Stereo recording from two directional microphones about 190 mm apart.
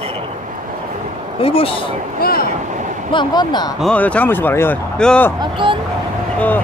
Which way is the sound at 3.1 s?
25° left (ahead or behind).